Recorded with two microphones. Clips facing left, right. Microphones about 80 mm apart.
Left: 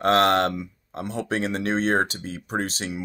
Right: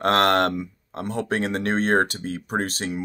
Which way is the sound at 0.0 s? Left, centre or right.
Right.